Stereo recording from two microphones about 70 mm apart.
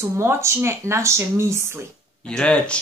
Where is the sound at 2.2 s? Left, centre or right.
Centre.